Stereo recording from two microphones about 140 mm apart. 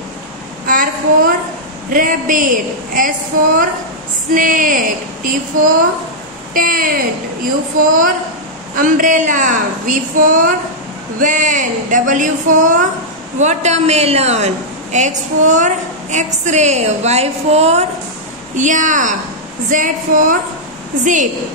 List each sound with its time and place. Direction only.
0.7 s a sound: 80° right
1.9 s a woman's voice: 75° right (ahead or behind)
4.3 s a woman's voice: 75° right (ahead or behind)
13.4 s a woman's voice: 55° right (ahead or behind)
18.6 s a woman's voice: 65° right (ahead or behind)